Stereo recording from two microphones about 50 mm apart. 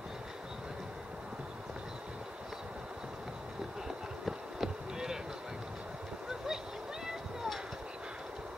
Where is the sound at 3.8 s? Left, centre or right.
Centre.